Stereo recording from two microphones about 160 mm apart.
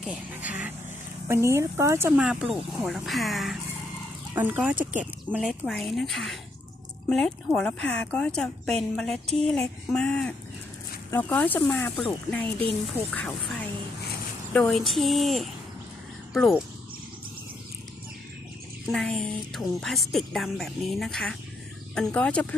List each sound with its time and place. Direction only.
0.3 s speech: 10° right (ahead or behind)
2.2 s a woman's voice: 5° right (ahead or behind)
4.4 s a woman's voice: 10° right (ahead or behind)
18.9 s a woman's voice: centre (ahead or behind)